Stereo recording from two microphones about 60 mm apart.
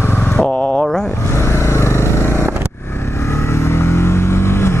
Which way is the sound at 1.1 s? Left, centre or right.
Left.